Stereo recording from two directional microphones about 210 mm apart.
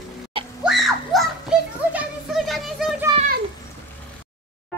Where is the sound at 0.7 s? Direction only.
Centre (ahead or behind).